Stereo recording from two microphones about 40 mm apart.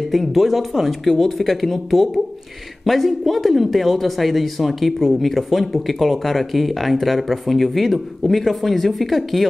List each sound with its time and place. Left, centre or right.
0.1 s speech: centre